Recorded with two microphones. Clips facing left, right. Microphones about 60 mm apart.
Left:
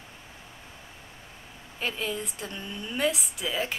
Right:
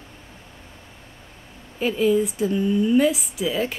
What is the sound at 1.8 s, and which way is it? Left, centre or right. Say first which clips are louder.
A woman's voice: right 12 dB; centre.